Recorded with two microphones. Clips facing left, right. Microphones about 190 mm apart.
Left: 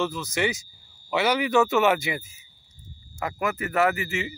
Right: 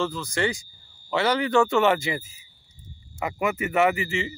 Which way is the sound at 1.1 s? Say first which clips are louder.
Even; 15° left (ahead or behind).